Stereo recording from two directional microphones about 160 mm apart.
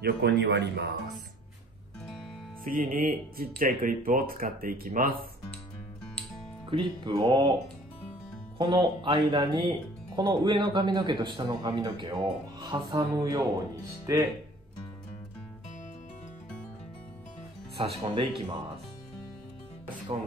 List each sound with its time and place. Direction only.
0.0 s speech: 90° right
2.6 s speech: 60° right (ahead or behind)
6.7 s speech: 30° right (ahead or behind)
8.5 s speech: 30° right (ahead or behind)
17.7 s speech: 35° right (ahead or behind)